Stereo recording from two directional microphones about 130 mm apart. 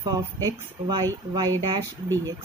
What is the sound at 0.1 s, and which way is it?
Speech, 30° right (ahead or behind).